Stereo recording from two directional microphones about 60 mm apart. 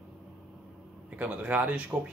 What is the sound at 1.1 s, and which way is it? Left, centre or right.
Speech, right.